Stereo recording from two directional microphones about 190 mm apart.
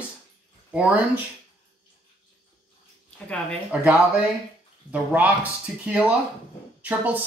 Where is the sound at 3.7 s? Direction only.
5° right (ahead or behind).